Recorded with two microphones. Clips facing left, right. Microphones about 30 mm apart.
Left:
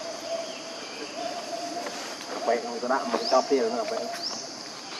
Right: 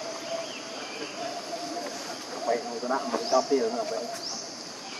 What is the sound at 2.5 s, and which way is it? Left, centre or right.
Speech, left.